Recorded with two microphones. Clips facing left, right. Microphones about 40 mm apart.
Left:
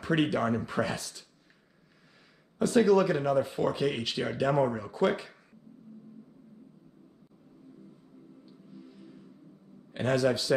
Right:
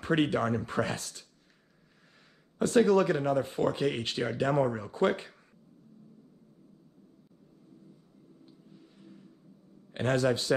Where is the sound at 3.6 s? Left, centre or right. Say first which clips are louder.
Even; right.